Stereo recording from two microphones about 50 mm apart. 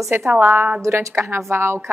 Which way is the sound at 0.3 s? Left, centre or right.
Right.